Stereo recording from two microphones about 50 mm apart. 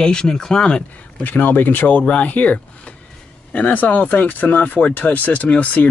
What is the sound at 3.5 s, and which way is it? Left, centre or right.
Speech, left.